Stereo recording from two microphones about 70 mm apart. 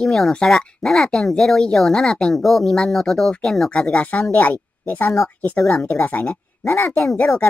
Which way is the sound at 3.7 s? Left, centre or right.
Centre.